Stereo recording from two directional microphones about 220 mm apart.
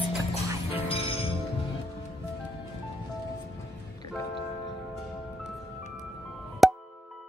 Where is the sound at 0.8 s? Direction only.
25° left (ahead or behind).